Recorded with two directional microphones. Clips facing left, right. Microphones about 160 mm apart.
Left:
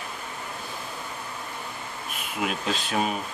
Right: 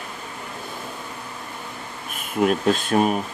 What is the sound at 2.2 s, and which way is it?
Speech, 45° right (ahead or behind).